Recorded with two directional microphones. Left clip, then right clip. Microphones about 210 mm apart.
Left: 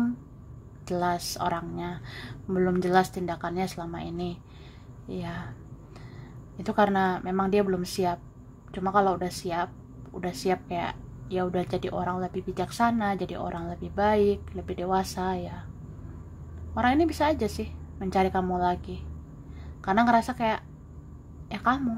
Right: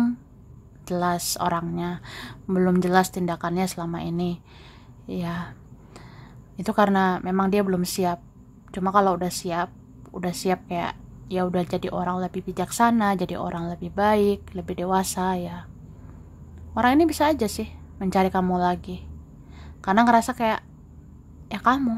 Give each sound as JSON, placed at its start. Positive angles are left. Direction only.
{"t": 0.8, "sound": "a woman's voice", "side_deg": -15}
{"t": 6.5, "sound": "a woman's voice", "side_deg": -20}
{"t": 16.7, "sound": "a woman's voice", "side_deg": -15}
{"t": 21.5, "sound": "a sound", "side_deg": -15}